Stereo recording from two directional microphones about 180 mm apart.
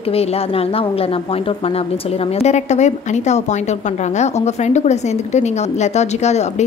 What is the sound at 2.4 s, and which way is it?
A woman's voice, 40° left (ahead or behind).